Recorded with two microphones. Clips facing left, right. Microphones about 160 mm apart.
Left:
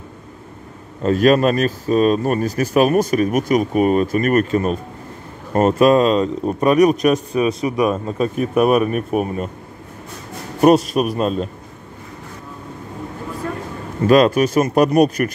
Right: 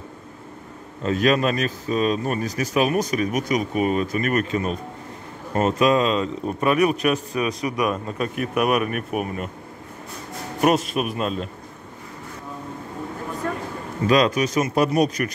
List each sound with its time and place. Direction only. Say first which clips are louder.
1.0 s a man's voice: left 6 dB; 45° left (ahead or behind)
10.6 s a man's voice: left 7 dB; 35° left (ahead or behind)
14.0 s speech: left 6 dB; 50° left (ahead or behind)